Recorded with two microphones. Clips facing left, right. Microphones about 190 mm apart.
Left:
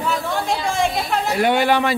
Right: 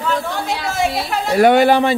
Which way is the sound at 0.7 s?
5° right (ahead or behind).